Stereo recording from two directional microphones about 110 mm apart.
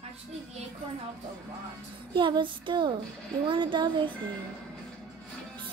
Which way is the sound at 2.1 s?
45° right (ahead or behind).